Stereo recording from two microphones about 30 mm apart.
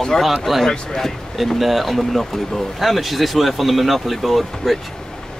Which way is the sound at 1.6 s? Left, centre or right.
Centre.